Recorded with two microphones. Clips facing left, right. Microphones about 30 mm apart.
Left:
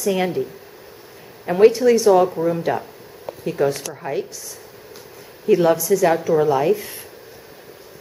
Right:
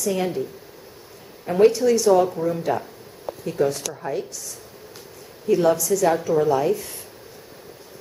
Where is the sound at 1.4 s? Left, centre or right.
Left.